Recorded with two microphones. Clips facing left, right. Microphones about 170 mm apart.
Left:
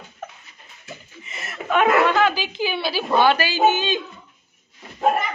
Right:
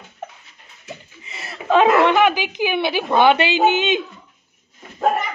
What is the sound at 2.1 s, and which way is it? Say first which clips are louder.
A woman's voice: right 3 dB; 15° right (ahead or behind).